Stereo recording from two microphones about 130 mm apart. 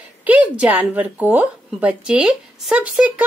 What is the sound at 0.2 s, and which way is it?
A woman's voice, 10° right (ahead or behind).